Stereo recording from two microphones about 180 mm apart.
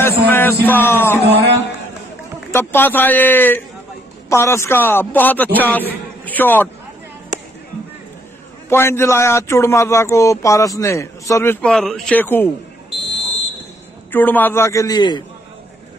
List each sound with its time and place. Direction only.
0.0 s a man's voice: 10° left (ahead or behind)
1.2 s speech: 65° right (ahead or behind)
2.5 s a man's voice: 10° left (ahead or behind)
8.6 s a man's voice: 15° left (ahead or behind)
11.6 s a man's voice: 5° left (ahead or behind)
14.1 s a man's voice: 10° left (ahead or behind)